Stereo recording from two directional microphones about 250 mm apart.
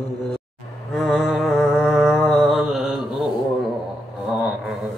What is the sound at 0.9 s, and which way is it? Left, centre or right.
Music, centre.